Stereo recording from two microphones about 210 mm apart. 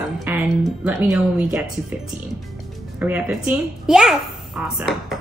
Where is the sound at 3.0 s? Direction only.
5° right (ahead or behind).